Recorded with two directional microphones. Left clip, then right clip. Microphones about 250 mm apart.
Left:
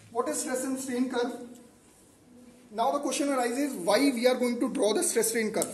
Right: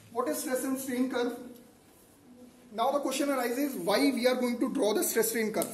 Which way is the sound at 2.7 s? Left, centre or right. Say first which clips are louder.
Left 1 dB; centre.